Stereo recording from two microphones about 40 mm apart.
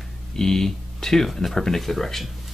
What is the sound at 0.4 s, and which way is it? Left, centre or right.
Speech, centre.